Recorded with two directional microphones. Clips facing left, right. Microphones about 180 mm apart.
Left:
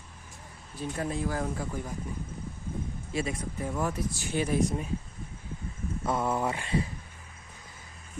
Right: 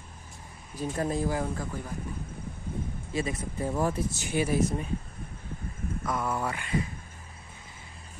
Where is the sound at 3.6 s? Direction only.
30° right (ahead or behind).